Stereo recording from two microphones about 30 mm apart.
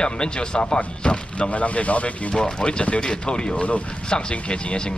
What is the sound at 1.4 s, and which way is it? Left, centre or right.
Speech, left.